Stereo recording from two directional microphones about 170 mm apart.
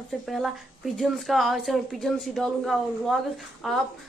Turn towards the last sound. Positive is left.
turn(degrees=0)  # may be behind; listen again after turning